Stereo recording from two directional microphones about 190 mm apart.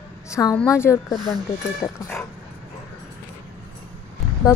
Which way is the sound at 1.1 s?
Centre (ahead or behind).